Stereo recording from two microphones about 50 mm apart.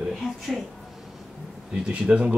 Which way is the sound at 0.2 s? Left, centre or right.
Centre.